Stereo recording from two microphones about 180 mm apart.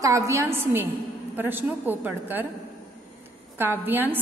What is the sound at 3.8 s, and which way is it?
Speech, 10° right (ahead or behind).